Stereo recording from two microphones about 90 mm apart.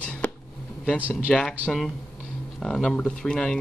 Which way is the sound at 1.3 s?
10° left (ahead or behind).